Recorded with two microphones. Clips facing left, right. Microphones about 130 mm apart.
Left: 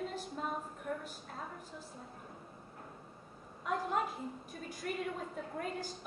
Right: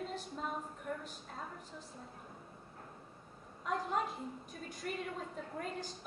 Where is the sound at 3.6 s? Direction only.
5° left (ahead or behind).